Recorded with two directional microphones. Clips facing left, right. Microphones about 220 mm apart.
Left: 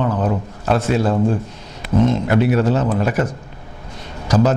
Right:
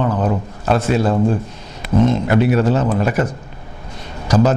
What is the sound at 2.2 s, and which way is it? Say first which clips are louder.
A man's voice: right 1 dB; 15° right (ahead or behind).